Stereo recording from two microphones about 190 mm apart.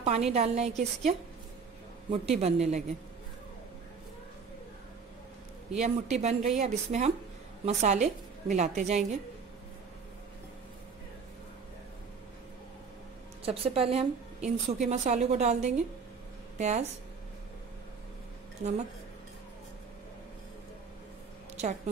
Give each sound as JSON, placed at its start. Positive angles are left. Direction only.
{"t": 0.0, "sound": "a woman's voice", "side_deg": -35}
{"t": 5.7, "sound": "a woman's voice", "side_deg": -35}
{"t": 13.5, "sound": "a woman's voice", "side_deg": -30}